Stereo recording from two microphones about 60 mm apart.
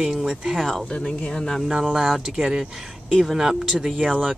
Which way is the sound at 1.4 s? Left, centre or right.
Centre.